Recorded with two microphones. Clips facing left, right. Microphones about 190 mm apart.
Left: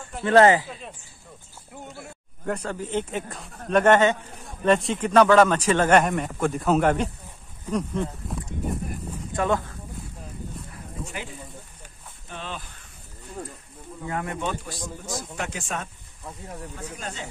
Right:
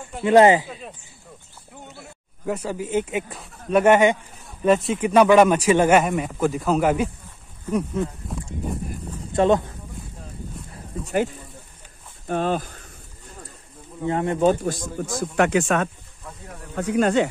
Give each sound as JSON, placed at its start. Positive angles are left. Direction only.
{"t": 0.2, "sound": "a man's voice", "side_deg": -15}
{"t": 0.7, "sound": "speech", "side_deg": 0}
{"t": 2.0, "sound": "a man's voice", "side_deg": -5}
{"t": 9.3, "sound": "speech", "side_deg": -25}
{"t": 12.3, "sound": "speech", "side_deg": -45}
{"t": 14.0, "sound": "a man's voice", "side_deg": -30}
{"t": 15.3, "sound": "speech", "side_deg": -70}